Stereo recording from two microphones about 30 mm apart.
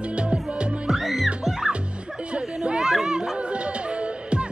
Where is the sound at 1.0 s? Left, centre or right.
Centre.